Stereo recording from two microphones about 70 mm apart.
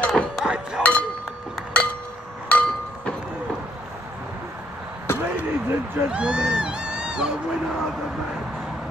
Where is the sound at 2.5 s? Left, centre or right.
Left.